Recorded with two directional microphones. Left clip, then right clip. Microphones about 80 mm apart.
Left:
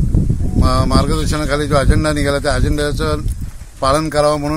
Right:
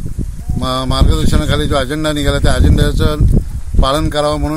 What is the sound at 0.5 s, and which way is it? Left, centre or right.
Speech, left.